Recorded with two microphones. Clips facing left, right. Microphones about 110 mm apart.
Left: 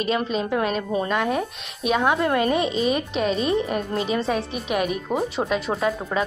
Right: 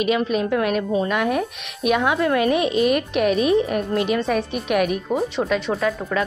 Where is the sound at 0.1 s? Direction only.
5° right (ahead or behind).